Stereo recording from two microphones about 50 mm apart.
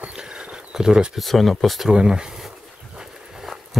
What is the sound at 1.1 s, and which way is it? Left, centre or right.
Speech, centre.